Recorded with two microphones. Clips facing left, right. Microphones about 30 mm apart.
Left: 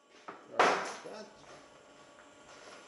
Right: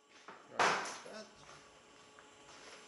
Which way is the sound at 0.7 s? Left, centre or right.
Centre.